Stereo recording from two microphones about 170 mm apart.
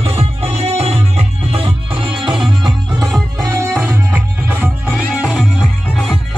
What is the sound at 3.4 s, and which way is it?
Music, 20° right (ahead or behind).